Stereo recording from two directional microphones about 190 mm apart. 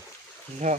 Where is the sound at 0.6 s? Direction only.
40° right (ahead or behind).